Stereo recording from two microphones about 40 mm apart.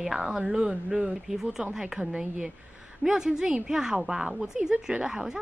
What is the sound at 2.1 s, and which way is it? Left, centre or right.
A woman's voice, right.